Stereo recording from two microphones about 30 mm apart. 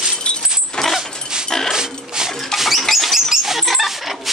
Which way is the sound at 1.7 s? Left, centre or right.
Centre.